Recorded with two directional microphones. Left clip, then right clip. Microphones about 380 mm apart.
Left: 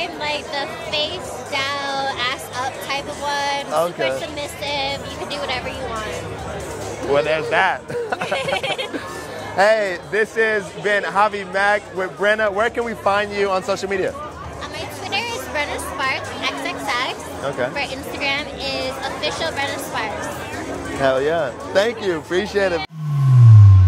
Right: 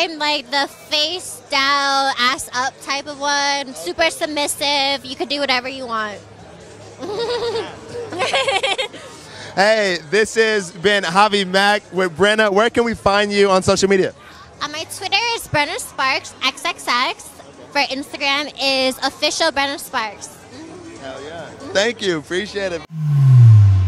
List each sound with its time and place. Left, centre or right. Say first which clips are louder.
0.0 s music: right 5 dB; right
7.2 s speech: left 2 dB; right
8.2 s music: right 9 dB; right
9.6 s a man's voice: right 1 dB; centre
14.6 s a sound: right 5 dB; right
17.7 s a woman's voice: right 5 dB; right
21.0 s speech: left 14 dB; centre
21.7 s speech: right 1 dB; centre